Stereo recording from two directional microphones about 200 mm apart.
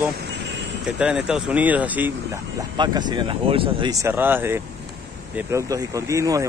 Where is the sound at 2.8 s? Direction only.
20° right (ahead or behind).